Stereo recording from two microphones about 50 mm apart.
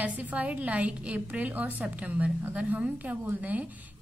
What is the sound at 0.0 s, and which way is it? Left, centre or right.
A woman's voice, right.